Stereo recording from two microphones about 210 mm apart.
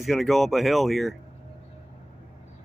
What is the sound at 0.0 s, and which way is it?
Speech, centre (ahead or behind).